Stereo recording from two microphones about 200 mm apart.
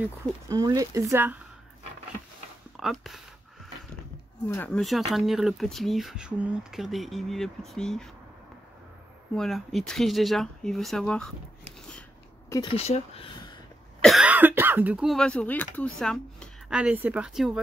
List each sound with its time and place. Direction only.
0.0 s speech: 15° right (ahead or behind)
2.8 s speech: centre (ahead or behind)
4.5 s speech: 10° left (ahead or behind)
9.3 s speech: centre (ahead or behind)
12.7 s speech: 30° left (ahead or behind)
14.0 s speech: 5° right (ahead or behind)